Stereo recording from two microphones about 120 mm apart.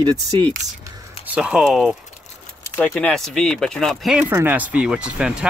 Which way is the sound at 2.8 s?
10° left (ahead or behind).